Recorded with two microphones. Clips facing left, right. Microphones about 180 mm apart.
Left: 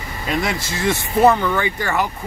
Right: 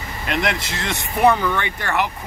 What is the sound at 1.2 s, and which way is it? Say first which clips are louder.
Speech: left 2 dB; centre (ahead or behind).